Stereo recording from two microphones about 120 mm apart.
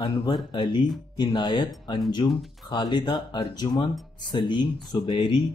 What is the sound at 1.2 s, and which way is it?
Speech, 35° left (ahead or behind).